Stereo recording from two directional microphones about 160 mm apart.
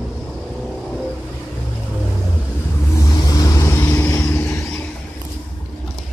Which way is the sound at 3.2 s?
25° left (ahead or behind).